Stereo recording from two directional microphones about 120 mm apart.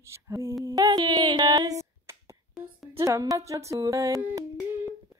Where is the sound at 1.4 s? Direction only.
30° right (ahead or behind).